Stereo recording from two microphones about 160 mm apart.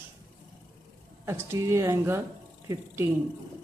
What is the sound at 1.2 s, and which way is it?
Speech, 15° right (ahead or behind).